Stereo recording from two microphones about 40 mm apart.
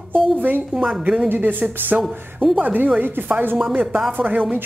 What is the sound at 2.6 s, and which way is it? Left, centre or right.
Speech, right.